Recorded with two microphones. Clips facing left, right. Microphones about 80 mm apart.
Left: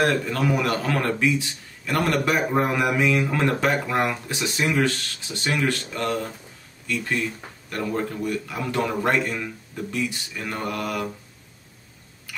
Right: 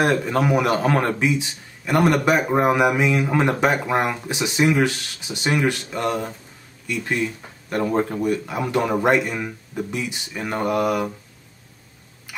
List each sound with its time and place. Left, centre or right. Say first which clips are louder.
0.0 s speech: right 3 dB; centre
7.7 s speech: right 5 dB; right
12.3 s a sound: even; centre